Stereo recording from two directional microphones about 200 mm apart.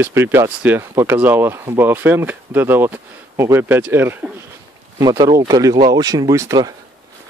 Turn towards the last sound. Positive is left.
turn(degrees=-15)  # may be behind; listen again after turning